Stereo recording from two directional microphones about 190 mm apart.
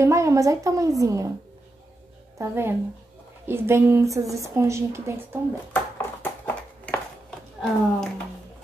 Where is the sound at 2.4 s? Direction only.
15° right (ahead or behind).